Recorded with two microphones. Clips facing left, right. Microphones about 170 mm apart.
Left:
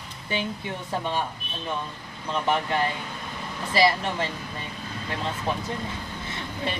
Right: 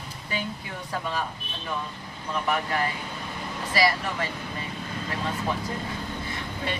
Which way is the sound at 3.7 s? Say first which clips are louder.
Left 3 dB; 25° left (ahead or behind).